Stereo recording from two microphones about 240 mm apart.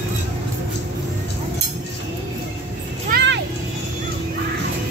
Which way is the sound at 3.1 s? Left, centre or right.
Right.